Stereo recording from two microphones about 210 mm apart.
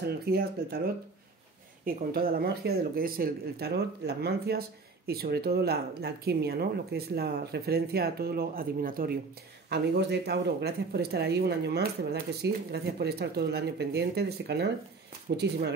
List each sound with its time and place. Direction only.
0.0 s speech: 50° right (ahead or behind)
2.1 s speech: 45° right (ahead or behind)